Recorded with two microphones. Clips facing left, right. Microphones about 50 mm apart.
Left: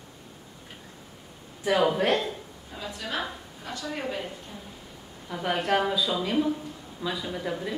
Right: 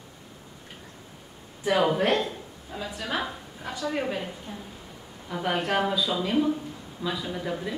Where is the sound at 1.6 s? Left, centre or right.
Centre.